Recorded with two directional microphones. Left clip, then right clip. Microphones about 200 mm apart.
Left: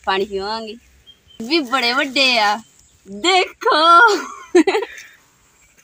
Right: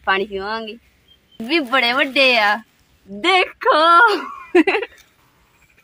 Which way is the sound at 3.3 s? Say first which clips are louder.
Even; 20° right (ahead or behind).